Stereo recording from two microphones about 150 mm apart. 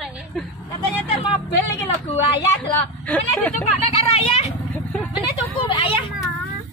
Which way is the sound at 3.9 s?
45° left (ahead or behind).